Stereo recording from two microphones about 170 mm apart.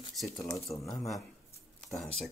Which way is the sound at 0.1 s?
Centre (ahead or behind).